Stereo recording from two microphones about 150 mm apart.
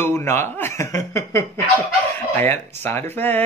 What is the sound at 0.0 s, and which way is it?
Speech, 15° left (ahead or behind).